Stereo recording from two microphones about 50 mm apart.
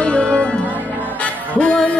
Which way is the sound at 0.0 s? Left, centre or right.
Left.